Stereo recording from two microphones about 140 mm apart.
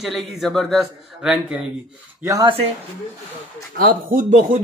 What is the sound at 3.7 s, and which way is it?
Speech, 85° right.